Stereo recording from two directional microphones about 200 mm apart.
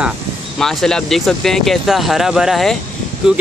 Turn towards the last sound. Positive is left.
turn(degrees=-5)  # may be behind; listen again after turning